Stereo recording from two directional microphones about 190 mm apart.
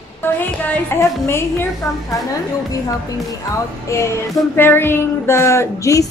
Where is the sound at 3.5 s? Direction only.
15° left (ahead or behind).